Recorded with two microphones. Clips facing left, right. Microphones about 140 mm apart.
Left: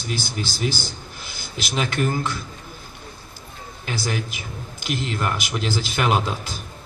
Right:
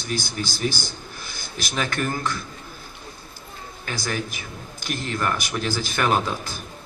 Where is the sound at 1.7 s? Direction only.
15° left (ahead or behind).